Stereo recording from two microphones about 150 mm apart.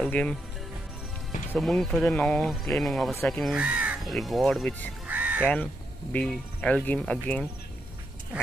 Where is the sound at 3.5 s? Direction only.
10° right (ahead or behind).